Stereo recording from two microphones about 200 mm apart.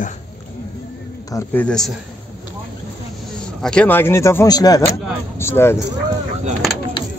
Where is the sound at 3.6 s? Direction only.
5° left (ahead or behind).